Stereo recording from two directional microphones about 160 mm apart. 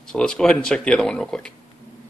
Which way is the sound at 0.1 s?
5° left (ahead or behind).